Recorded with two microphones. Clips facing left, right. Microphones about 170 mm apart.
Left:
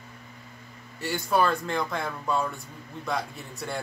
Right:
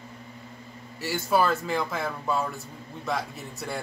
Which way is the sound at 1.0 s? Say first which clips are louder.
Even; centre (ahead or behind).